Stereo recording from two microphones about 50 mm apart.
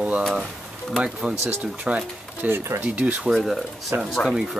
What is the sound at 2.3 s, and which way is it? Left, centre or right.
Speech, right.